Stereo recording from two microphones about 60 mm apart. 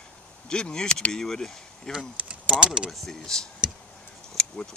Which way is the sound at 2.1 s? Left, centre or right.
Right.